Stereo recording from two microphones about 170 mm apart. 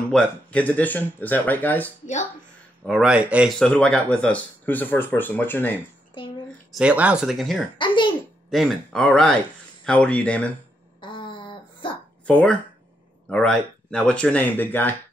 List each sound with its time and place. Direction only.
0.1 s speech: 5° left (ahead or behind)
3.1 s speech: 5° right (ahead or behind); by 5.8 s 10° left (ahead or behind)
6.7 s speech: 5° right (ahead or behind)
7.7 s a child's voice: 30° left (ahead or behind)
8.5 s speech: centre (ahead or behind)
11.0 s hiccup: 30° left (ahead or behind)
12.3 s speech: 5° left (ahead or behind)